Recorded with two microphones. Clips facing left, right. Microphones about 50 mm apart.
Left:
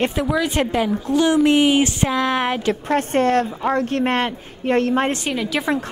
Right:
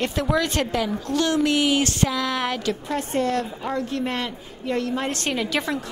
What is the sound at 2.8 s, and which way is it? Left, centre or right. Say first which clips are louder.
A woman's voice: left 8 dB; left.